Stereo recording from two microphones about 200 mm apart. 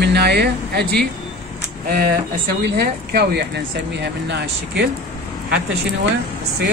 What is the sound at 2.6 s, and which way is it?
Speech, 55° right (ahead or behind).